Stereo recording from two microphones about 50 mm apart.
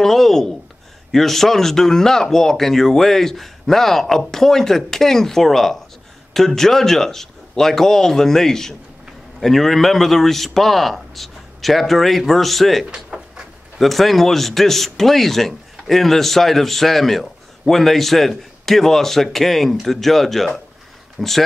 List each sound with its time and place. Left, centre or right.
0.0 s a man's voice: centre
13.1 s a sound: centre
13.7 s a man's voice: centre